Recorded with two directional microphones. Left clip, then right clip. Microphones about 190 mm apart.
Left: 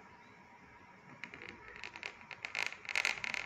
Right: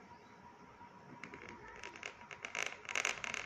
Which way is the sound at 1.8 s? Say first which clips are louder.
Left 3 dB; 20° right (ahead or behind).